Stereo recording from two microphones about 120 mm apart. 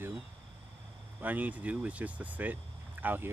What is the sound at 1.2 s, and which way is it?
Speech, 15° right (ahead or behind).